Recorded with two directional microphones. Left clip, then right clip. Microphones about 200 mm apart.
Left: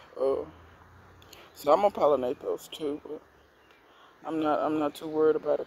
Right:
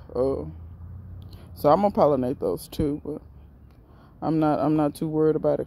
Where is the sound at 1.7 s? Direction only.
20° right (ahead or behind).